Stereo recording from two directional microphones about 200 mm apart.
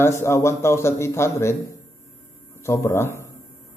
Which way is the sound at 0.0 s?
10° left (ahead or behind).